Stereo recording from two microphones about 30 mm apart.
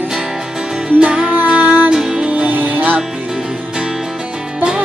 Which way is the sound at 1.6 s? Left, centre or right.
Right.